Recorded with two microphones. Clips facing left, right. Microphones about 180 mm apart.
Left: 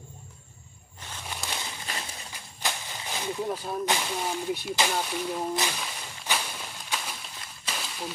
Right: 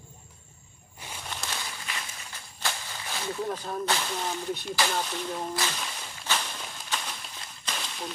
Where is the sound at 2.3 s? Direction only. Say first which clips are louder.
Even; 15° left (ahead or behind).